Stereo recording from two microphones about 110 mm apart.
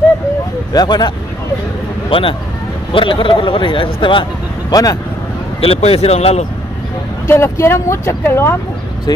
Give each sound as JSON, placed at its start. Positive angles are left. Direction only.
{"t": 0.7, "sound": "speech", "side_deg": 40}
{"t": 2.0, "sound": "speech", "side_deg": 55}
{"t": 5.6, "sound": "speech", "side_deg": 65}
{"t": 7.2, "sound": "speech", "side_deg": 25}